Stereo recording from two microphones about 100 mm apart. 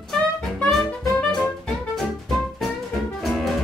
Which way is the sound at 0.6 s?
5° left (ahead or behind).